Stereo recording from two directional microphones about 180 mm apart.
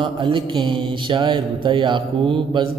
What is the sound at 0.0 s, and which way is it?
A man's voice, 25° right (ahead or behind).